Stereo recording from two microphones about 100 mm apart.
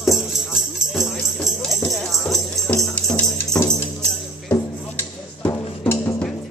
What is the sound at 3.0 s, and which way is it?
Music, 15° left (ahead or behind).